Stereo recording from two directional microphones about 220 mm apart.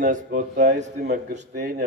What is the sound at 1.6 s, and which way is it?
Speech, 45° right (ahead or behind).